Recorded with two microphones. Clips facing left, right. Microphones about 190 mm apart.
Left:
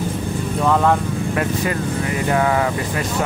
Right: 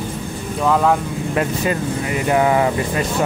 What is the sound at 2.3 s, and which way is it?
Speech, 20° right (ahead or behind).